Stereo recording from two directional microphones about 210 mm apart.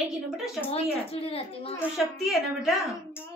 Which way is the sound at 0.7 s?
25° left (ahead or behind).